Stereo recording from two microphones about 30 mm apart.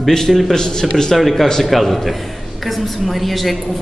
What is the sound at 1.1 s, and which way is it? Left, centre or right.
A woman's voice, centre.